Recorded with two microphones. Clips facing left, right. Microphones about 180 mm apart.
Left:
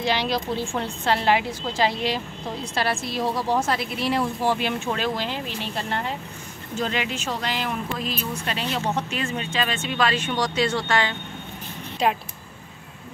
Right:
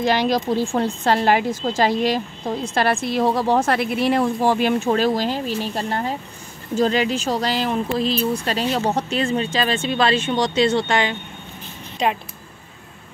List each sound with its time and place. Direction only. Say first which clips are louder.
0.0 s a woman's voice: right 5 dB; 45° right (ahead or behind); by 11.1 s 20° right (ahead or behind)
12.0 s speech: right 1 dB; 5° left (ahead or behind)